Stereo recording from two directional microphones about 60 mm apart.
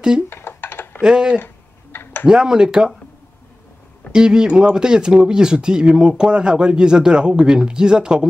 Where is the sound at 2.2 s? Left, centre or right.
Centre.